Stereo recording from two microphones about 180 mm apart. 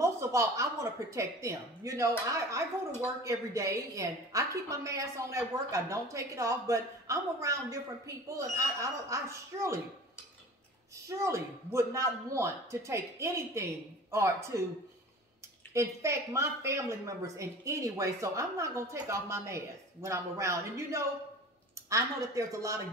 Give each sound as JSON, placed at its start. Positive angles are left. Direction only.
{"t": 0.0, "sound": "a woman's voice", "side_deg": -15}
{"t": 11.1, "sound": "a woman's voice", "side_deg": -15}
{"t": 15.7, "sound": "a woman's voice", "side_deg": -15}